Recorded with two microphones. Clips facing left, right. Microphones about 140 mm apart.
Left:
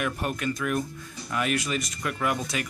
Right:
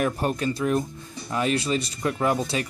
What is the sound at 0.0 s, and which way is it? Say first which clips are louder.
Speech: right 4 dB; 30° right (ahead or behind).